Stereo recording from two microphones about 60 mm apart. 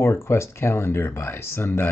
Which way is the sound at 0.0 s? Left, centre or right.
Left.